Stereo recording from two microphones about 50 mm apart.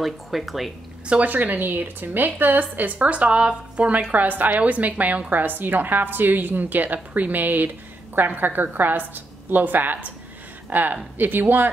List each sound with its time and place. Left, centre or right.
0.0 s speech: centre
1.0 s a woman's voice: right
1.3 s a woman's voice: right
3.0 s a woman's voice: right